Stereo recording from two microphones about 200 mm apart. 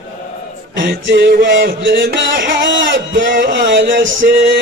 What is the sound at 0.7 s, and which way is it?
Music, 55° right (ahead or behind).